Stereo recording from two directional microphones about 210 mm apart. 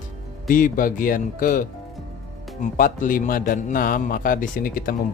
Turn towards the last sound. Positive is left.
turn(degrees=40)  # may be behind; listen again after turning